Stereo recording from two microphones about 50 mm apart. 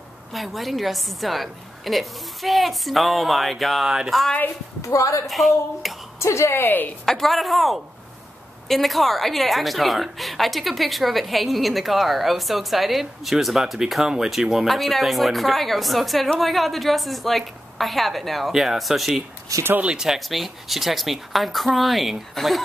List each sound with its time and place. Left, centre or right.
0.3 s a woman's voice: centre
4.8 s a woman's voice: left
5.2 s a woman's voice: centre
6.1 s a woman's voice: left
6.6 s a woman's voice: left
7.1 s a woman's voice: centre
20.2 s a woman's voice: centre